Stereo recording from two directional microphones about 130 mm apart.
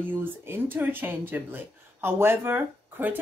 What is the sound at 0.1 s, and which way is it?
Speech, 15° right (ahead or behind).